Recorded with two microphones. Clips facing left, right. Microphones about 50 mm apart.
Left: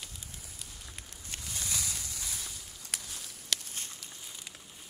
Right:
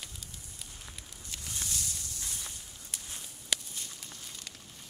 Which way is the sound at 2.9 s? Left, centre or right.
Left.